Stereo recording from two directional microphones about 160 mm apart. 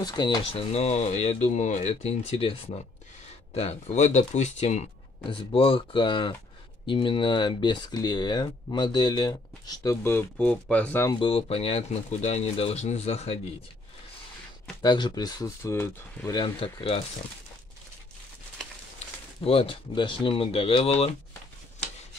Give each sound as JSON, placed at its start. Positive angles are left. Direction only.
{"t": 0.0, "sound": "speech", "side_deg": 25}
{"t": 5.3, "sound": "speech", "side_deg": 35}
{"t": 11.1, "sound": "speech", "side_deg": 30}
{"t": 14.8, "sound": "speech", "side_deg": 25}
{"t": 16.3, "sound": "speech", "side_deg": 30}
{"t": 19.4, "sound": "speech", "side_deg": 35}